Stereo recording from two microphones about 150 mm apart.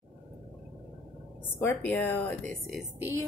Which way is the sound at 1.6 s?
15° left (ahead or behind).